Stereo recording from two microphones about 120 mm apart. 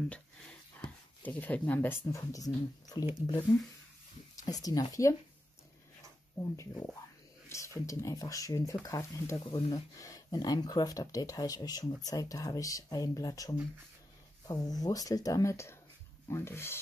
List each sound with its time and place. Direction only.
0.1 s speech: 10° left (ahead or behind); by 3.1 s 30° left (ahead or behind)
4.5 s speech: 30° left (ahead or behind)
6.3 s speech: 25° left (ahead or behind)